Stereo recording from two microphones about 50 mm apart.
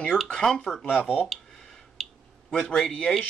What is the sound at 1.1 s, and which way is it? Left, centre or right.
Speech, centre.